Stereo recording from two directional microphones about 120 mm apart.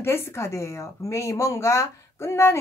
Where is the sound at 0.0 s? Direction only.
20° left (ahead or behind).